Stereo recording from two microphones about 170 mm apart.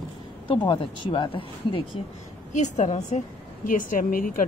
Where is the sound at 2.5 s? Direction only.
45° left (ahead or behind).